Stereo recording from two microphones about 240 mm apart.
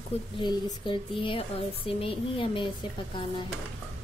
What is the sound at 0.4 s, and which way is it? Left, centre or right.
A woman's voice, centre.